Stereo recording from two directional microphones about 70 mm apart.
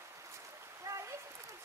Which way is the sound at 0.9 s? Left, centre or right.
Right.